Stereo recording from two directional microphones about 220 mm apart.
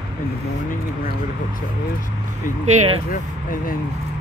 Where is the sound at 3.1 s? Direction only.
40° left (ahead or behind).